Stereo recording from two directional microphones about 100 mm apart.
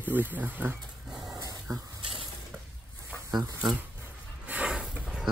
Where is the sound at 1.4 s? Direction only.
35° right (ahead or behind).